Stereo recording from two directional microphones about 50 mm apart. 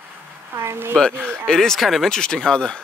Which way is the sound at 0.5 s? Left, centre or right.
Right.